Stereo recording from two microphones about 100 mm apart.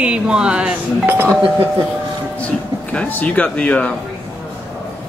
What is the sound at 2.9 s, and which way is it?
Speech, 15° left (ahead or behind).